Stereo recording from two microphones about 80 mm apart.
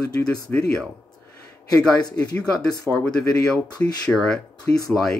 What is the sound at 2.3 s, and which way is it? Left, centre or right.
Speech, centre.